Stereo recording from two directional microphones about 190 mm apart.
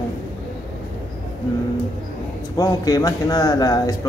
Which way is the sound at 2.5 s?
20° left (ahead or behind).